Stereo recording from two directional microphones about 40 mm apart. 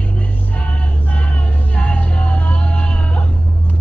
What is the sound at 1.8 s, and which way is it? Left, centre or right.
Music, left.